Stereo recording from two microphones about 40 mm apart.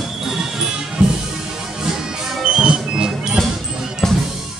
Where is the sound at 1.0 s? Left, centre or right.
Right.